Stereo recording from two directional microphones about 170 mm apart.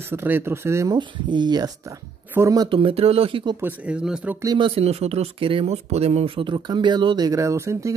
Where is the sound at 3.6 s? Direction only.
10° right (ahead or behind).